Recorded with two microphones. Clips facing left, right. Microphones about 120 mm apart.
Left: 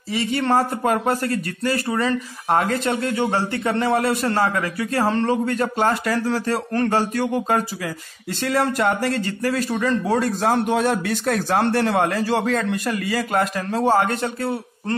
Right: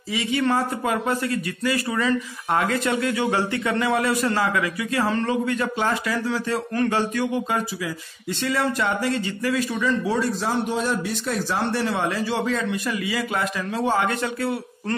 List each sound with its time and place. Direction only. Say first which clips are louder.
0.1 s a man's voice: left 2 dB; 45° left (ahead or behind)